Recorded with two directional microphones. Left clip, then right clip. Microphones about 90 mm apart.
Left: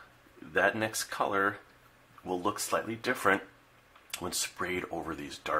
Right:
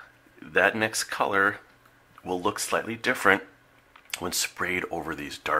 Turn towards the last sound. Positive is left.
turn(degrees=-35)  # may be behind; listen again after turning